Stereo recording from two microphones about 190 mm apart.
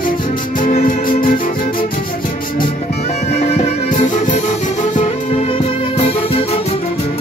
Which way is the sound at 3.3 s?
35° left (ahead or behind).